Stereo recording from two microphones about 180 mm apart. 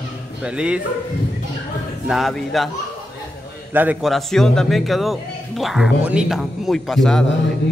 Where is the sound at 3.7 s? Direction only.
10° right (ahead or behind).